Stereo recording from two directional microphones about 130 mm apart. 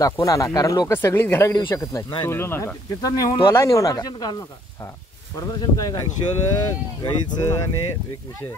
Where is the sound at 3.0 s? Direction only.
30° left (ahead or behind).